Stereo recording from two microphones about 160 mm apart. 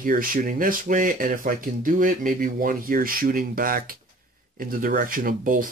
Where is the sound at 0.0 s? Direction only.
60° right (ahead or behind).